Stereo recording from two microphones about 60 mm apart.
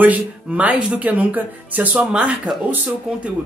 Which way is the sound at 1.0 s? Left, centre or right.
Right.